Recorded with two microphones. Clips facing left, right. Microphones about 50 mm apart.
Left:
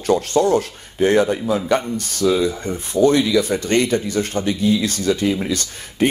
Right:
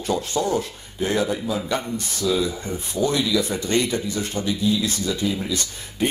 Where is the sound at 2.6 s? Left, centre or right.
Left.